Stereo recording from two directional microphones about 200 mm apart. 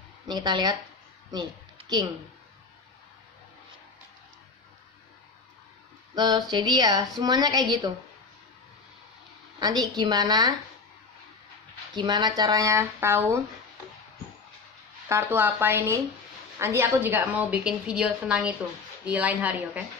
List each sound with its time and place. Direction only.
0.3 s a woman's voice: 20° right (ahead or behind)
6.1 s a sound: 20° right (ahead or behind)
6.5 s a woman's voice: 20° right (ahead or behind)
9.6 s a woman's voice: 20° right (ahead or behind)
11.9 s a woman's voice: 20° right (ahead or behind)
15.0 s a woman's voice: 10° right (ahead or behind)